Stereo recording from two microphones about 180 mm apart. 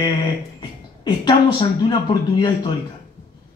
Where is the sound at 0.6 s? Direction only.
25° left (ahead or behind).